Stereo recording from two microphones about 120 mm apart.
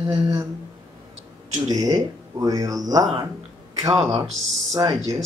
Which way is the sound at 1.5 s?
30° right (ahead or behind).